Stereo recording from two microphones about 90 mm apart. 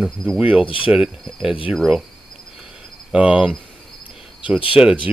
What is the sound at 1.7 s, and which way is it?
Speech, centre (ahead or behind).